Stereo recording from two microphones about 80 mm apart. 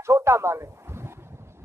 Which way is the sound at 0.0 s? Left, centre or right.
Right.